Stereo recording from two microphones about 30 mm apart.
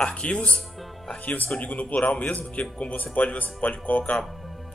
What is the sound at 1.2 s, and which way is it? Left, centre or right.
Speech, left.